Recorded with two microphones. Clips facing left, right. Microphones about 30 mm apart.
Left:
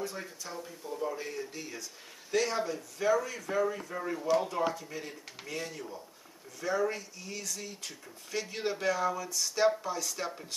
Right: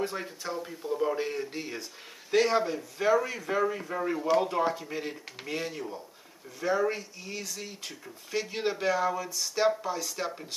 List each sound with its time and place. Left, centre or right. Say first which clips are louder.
0.0 s speech: right 6 dB; right; by 10.4 s centre